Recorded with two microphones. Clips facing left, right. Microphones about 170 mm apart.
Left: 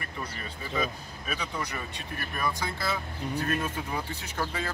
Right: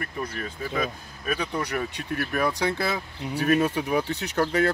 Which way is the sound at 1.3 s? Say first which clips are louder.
Right 7 dB; 70° right (ahead or behind).